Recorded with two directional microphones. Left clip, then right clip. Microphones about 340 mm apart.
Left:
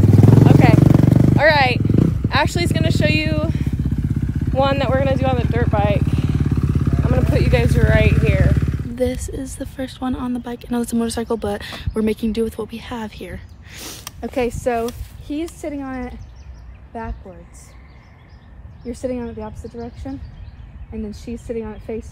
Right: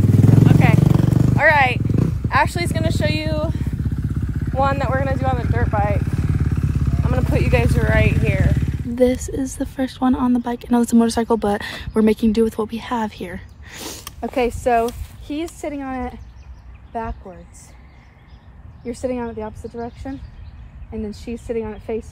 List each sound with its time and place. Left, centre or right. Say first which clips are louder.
0.7 s vehicle: left 4 dB; centre
1.3 s wild animals: right 1 dB; centre
1.8 s a sound: left 4 dB; left
2.2 s speech: right 4 dB; centre
3.9 s motorcycle: left 3 dB; left
4.6 s speech: left 2 dB; centre
6.0 s vehicle: left 3 dB; left
7.1 s speech: left 1 dB; centre
8.9 s a woman's voice: right 5 dB; centre
18.9 s speech: right 1 dB; centre